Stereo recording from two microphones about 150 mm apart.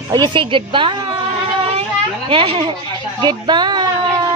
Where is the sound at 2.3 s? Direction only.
35° right (ahead or behind).